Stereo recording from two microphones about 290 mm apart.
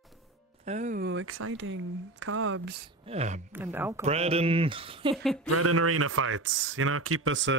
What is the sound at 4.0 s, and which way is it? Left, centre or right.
Speech, right.